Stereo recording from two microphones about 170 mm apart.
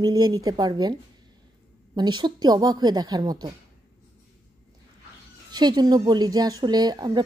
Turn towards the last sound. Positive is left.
turn(degrees=-25)  # may be behind; listen again after turning